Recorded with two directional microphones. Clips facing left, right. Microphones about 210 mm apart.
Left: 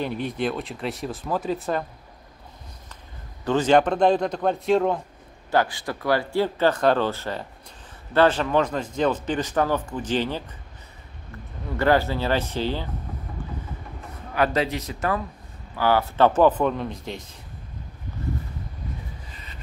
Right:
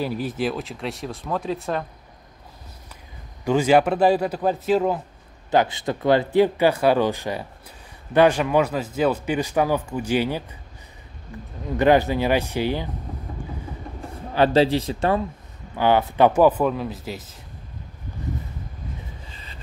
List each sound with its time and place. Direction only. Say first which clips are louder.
0.0 s speech: right 1 dB; 5° right (ahead or behind)
3.4 s speech: right 1 dB; 10° right (ahead or behind)
5.5 s speech: right 3 dB; 20° right (ahead or behind)
14.3 s a man's voice: right 6 dB; 30° right (ahead or behind); by 17.4 s 5° right (ahead or behind)
19.3 s a sound: right 1 dB; 30° right (ahead or behind)